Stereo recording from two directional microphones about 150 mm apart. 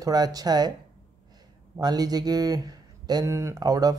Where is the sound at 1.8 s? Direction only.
25° right (ahead or behind).